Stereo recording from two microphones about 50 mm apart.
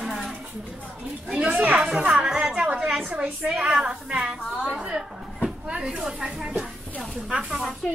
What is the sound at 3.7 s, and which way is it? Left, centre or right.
Speech, right.